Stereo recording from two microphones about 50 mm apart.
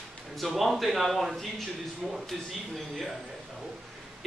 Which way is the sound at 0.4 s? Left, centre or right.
Centre.